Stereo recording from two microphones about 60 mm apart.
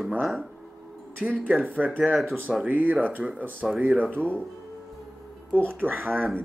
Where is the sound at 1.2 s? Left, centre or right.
Right.